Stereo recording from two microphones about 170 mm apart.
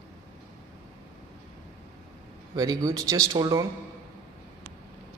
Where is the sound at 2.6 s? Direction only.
20° right (ahead or behind).